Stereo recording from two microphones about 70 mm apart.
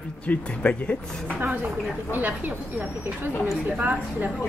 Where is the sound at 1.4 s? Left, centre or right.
Right.